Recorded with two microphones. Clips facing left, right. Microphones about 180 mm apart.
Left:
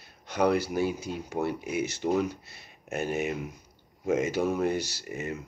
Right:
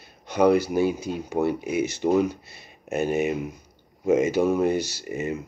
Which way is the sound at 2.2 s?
10° right (ahead or behind).